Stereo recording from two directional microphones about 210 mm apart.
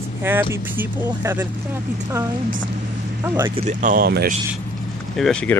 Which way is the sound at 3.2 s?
10° right (ahead or behind).